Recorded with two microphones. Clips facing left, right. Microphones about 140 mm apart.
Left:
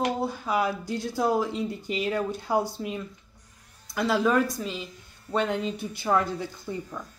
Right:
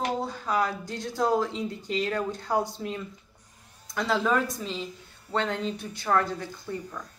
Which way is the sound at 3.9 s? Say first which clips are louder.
Left 2 dB; 5° left (ahead or behind).